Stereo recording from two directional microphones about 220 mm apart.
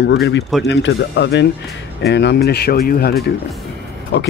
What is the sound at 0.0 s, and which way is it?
Speech, 55° left (ahead or behind).